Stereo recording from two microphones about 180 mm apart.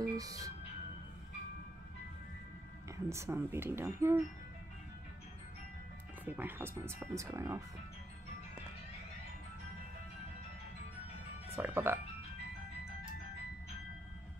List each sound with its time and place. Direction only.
0.0 s music: 20° right (ahead or behind)
3.1 s speech: 15° right (ahead or behind)
6.2 s speech: 10° right (ahead or behind)
11.5 s speech: 10° right (ahead or behind)